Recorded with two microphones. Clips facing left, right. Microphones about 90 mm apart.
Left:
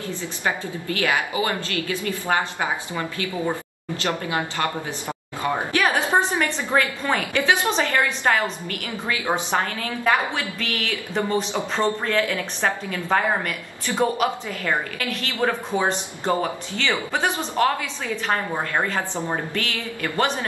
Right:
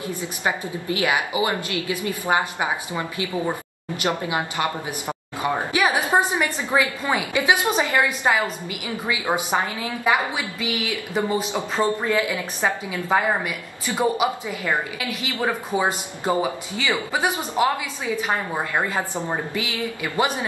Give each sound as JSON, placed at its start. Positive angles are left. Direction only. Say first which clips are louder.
{"t": 0.0, "sound": "a woman's voice", "louder": "right 1 dB", "side_deg": -15}